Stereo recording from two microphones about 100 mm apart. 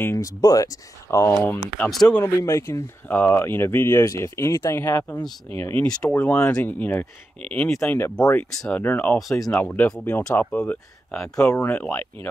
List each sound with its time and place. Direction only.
0.0 s speech: 30° left (ahead or behind)
1.8 s speech: 5° left (ahead or behind)
2.1 s speech: 30° left (ahead or behind)